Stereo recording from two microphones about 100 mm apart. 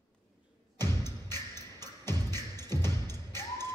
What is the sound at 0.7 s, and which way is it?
Music, 25° left (ahead or behind).